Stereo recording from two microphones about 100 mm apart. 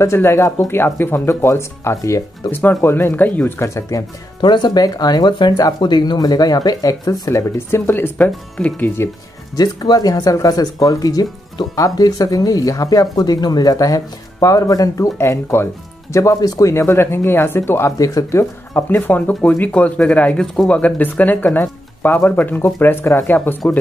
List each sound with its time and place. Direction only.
0.0 s speech: 25° left (ahead or behind)
4.4 s speech: 45° left (ahead or behind); by 8.3 s 20° left (ahead or behind)
8.3 s speech: 10° left (ahead or behind)
9.6 s speech: 40° left (ahead or behind)
18.9 s speech: 20° left (ahead or behind)